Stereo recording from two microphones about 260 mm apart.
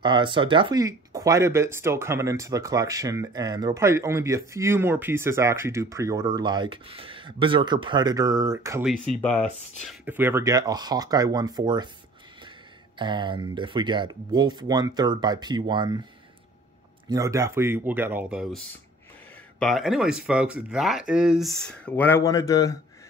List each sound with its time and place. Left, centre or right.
0.0 s speech: centre
17.1 s speech: centre
19.6 s speech: centre